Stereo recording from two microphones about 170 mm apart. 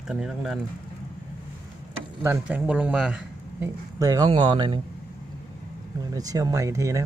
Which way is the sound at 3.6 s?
20° right (ahead or behind).